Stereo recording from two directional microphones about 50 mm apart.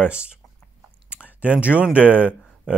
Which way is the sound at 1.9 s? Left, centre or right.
Right.